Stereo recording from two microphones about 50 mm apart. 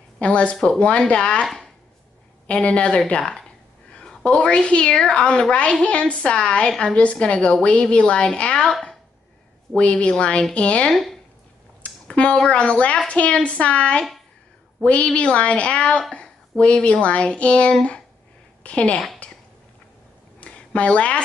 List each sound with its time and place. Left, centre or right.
0.2 s a woman's voice: left
9.8 s a woman's voice: left
10.9 s speech: centre
11.8 s a woman's voice: left
20.3 s a sound: left